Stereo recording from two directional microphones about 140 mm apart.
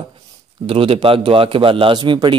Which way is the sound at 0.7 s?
40° right (ahead or behind).